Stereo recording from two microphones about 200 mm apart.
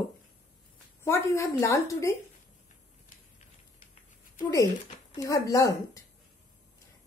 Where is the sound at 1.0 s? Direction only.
15° left (ahead or behind).